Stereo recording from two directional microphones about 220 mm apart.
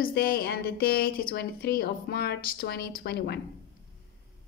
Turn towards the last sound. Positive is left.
turn(degrees=45)  # may be behind; listen again after turning